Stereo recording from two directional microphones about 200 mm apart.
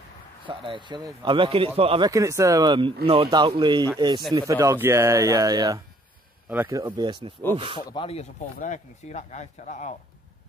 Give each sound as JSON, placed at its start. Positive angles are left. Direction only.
{"t": 0.5, "sound": "a man's voice", "side_deg": -25}
{"t": 2.0, "sound": "a man's voice", "side_deg": -15}
{"t": 7.9, "sound": "speech", "side_deg": 30}